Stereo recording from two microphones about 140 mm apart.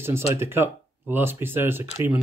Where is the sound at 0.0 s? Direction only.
15° right (ahead or behind).